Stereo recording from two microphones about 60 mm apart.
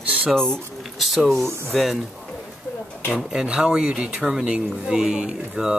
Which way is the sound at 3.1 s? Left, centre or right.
Centre.